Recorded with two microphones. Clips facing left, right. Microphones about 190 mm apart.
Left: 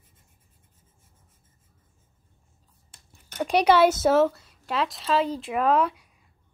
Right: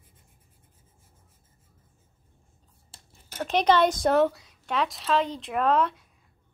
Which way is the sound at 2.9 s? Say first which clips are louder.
Right 4 dB; 30° right (ahead or behind).